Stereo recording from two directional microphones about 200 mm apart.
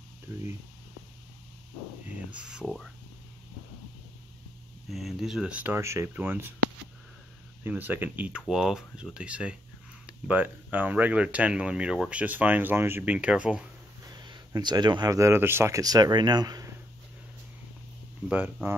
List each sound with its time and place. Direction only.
2.3 s speech: 5° right (ahead or behind)
4.8 s speech: centre (ahead or behind)
7.6 s speech: 10° right (ahead or behind)
14.1 s speech: 20° right (ahead or behind)
18.3 s speech: 10° right (ahead or behind)